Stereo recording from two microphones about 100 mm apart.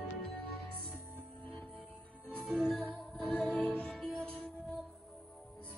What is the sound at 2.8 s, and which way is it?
Music, 15° left (ahead or behind).